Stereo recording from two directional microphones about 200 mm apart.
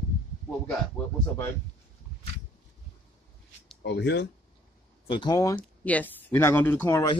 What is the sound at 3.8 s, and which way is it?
Speech, 60° left (ahead or behind).